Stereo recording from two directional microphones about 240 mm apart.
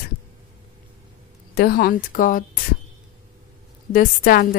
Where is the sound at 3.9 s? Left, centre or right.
Left.